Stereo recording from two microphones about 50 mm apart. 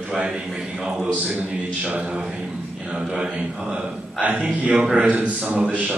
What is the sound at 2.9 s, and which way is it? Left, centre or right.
A man's voice, centre.